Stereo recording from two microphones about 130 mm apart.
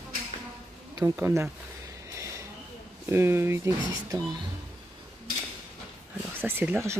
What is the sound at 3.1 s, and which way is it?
Speech, 20° right (ahead or behind).